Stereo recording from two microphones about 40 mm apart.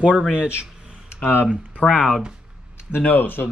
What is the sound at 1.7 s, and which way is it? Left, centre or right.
Speech, left.